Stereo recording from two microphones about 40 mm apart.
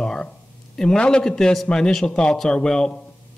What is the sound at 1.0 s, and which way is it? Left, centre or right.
Speech, left.